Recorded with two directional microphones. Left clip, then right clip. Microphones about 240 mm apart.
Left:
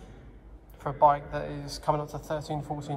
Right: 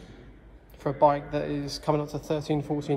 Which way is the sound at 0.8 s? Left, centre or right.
Right.